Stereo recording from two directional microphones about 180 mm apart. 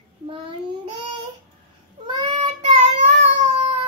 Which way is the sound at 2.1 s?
25° right (ahead or behind).